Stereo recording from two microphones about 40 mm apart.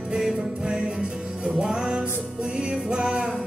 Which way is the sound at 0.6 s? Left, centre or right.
Right.